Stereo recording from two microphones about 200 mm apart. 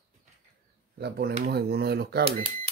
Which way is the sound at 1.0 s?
55° right (ahead or behind).